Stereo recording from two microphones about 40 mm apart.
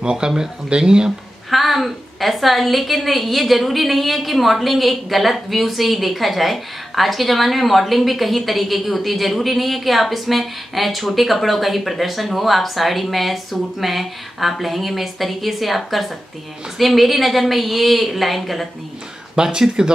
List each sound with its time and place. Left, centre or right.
0.0 s speech: centre
1.5 s a woman's voice: centre
19.3 s speech: centre